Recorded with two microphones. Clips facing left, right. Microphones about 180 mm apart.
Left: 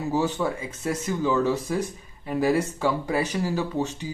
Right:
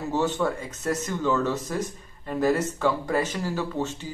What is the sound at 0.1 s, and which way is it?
Speech, 10° left (ahead or behind).